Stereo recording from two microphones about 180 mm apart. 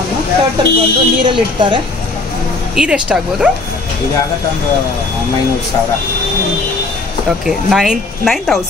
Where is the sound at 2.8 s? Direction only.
5° right (ahead or behind).